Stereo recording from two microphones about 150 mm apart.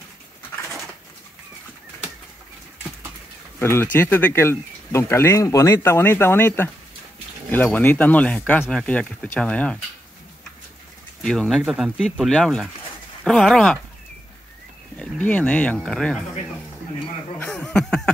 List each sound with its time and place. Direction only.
3.5 s speech: 15° left (ahead or behind)
11.2 s speech: centre (ahead or behind)
15.0 s speech: 10° left (ahead or behind)
17.4 s snicker: 10° left (ahead or behind)